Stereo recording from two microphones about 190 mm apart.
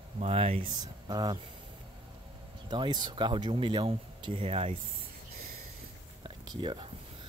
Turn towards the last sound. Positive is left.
turn(degrees=-25)  # may be behind; listen again after turning